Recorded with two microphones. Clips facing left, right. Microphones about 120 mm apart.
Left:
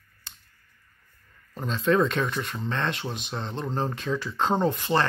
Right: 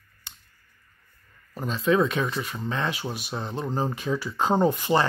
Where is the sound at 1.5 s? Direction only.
5° right (ahead or behind).